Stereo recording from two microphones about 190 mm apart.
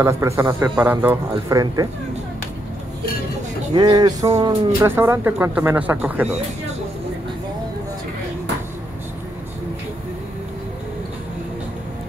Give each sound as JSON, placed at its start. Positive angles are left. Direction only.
{"t": 0.0, "sound": "speech", "side_deg": -15}
{"t": 3.7, "sound": "speech", "side_deg": -20}